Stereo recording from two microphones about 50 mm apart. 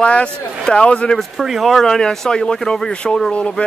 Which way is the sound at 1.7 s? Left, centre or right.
Centre.